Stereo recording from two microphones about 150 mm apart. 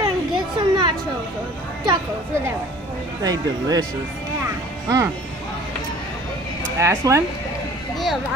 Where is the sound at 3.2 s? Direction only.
25° right (ahead or behind).